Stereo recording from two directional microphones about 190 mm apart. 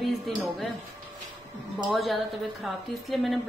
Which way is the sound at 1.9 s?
Centre (ahead or behind).